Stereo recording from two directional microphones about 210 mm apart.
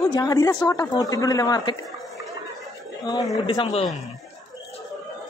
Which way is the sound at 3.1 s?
20° left (ahead or behind).